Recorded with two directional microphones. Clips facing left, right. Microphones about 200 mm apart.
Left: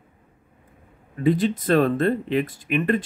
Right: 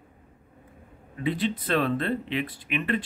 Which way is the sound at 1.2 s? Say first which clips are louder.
Left 7 dB; 45° left (ahead or behind).